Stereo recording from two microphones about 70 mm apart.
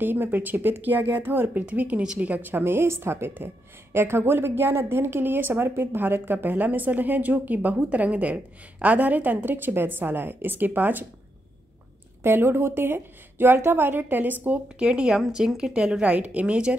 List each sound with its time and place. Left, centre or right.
0.0 s a woman's voice: right
12.2 s a woman's voice: right
14.9 s speech: centre